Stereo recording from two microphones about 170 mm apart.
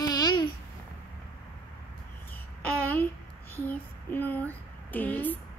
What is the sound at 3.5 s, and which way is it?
Speech, 10° left (ahead or behind).